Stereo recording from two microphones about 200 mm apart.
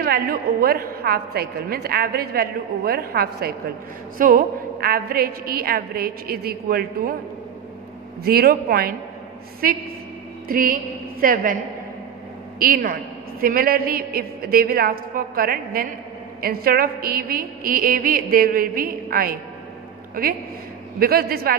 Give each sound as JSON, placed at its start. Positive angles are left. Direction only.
{"t": 0.0, "sound": "a woman's voice", "side_deg": -50}
{"t": 8.2, "sound": "a woman's voice", "side_deg": -50}
{"t": 12.5, "sound": "a woman's voice", "side_deg": -45}